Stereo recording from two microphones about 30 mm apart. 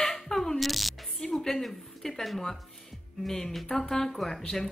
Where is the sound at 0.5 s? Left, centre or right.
Centre.